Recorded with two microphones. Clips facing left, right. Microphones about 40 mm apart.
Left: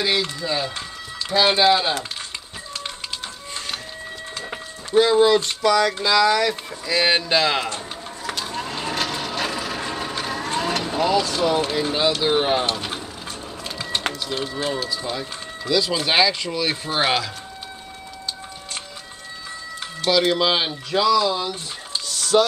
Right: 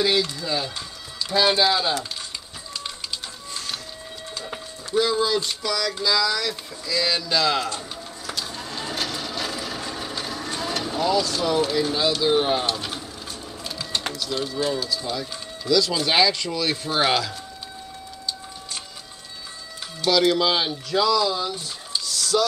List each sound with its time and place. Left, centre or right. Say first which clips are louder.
0.2 s speech: left 1 dB; left
3.5 s printer: left 2 dB; left
4.9 s speech: left 6 dB; left
8.3 s a sound: left 4 dB; left
10.8 s speech: even; left
13.7 s typing: left 2 dB; left
14.1 s speech: even; left
20.1 s speech: left 1 dB; centre
22.0 s music: left 4 dB; left